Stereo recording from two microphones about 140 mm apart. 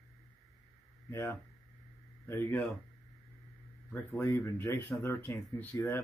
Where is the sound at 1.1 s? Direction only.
20° left (ahead or behind).